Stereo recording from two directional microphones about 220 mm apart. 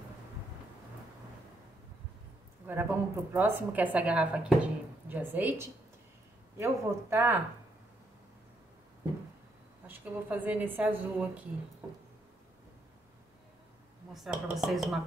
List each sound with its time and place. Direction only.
2.6 s a woman's voice: 10° right (ahead or behind)
9.8 s a woman's voice: 10° right (ahead or behind)
14.1 s speech: centre (ahead or behind)